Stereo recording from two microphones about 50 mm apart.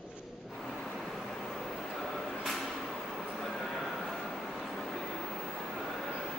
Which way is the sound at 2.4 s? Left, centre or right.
Centre.